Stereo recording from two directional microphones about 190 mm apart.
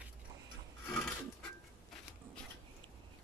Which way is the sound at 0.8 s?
5° left (ahead or behind).